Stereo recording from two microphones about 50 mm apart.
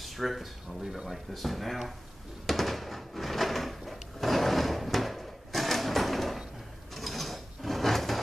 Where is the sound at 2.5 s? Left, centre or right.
Centre.